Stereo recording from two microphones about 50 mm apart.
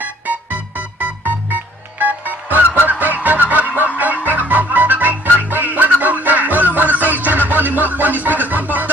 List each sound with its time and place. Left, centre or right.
0.0 s music: right